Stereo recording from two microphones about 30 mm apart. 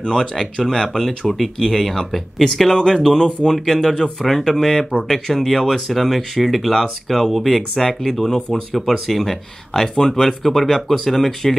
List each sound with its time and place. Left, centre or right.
0.0 s speech: left
0.4 s speech: left
1.9 s speech: centre